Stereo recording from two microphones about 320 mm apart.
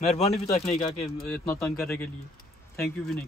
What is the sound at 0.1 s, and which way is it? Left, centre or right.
Speech, centre.